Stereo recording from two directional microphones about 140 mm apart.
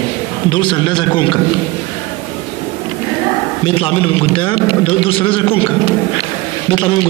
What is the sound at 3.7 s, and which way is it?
Speech, 40° left (ahead or behind).